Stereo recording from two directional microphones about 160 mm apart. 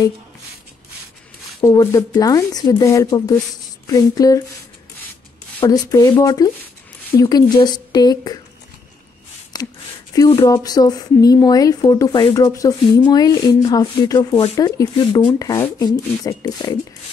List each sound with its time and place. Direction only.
1.6 s a woman's voice: 20° left (ahead or behind)
5.7 s a woman's voice: 20° left (ahead or behind)
9.5 s a sound: 25° left (ahead or behind)
10.3 s a woman's voice: 25° left (ahead or behind)